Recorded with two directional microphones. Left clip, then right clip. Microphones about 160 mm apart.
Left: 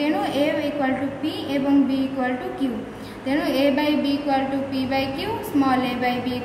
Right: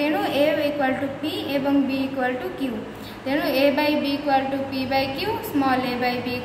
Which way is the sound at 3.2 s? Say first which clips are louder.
Right 1 dB; 15° right (ahead or behind).